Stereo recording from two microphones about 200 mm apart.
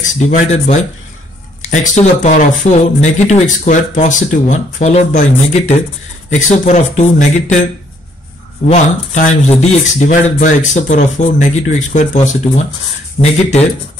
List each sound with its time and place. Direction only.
0.0 s speech: 35° left (ahead or behind)
8.6 s speech: 35° left (ahead or behind)